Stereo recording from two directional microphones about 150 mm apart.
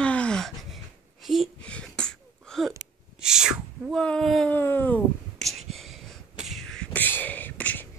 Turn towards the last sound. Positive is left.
turn(degrees=10)  # may be behind; listen again after turning